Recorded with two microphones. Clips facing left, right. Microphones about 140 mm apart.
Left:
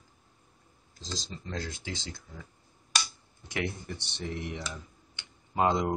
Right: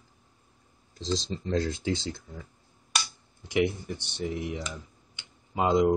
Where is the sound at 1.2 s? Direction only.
30° right (ahead or behind).